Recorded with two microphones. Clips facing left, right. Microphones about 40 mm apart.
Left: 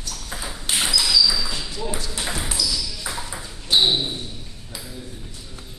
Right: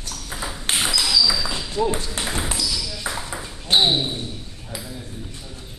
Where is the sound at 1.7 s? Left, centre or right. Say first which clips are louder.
Right 6 dB; right.